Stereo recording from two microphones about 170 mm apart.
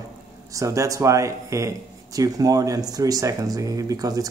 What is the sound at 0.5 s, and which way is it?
Speech, 20° right (ahead or behind).